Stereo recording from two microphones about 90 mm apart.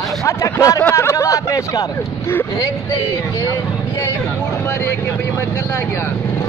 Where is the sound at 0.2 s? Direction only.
35° left (ahead or behind).